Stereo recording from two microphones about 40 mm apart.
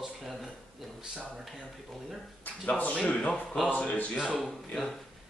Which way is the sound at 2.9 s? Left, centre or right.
Left.